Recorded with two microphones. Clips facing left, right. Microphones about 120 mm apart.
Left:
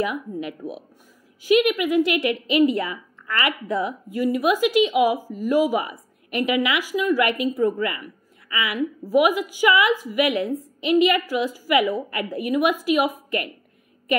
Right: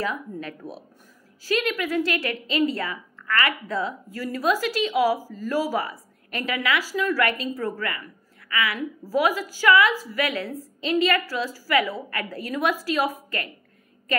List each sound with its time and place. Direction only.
0.0 s a woman's voice: 15° left (ahead or behind)